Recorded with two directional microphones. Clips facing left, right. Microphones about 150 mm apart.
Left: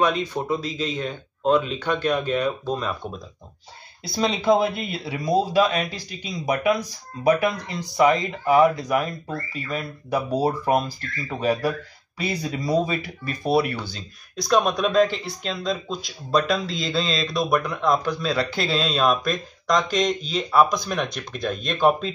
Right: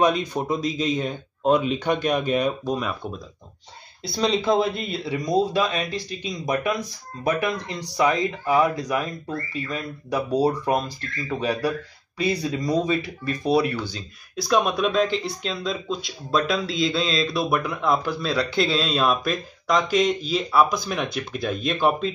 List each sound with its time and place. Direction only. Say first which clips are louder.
0.0 s speech: right 1 dB; 15° right (ahead or behind)
4.0 s speech: right 1 dB; 5° left (ahead or behind)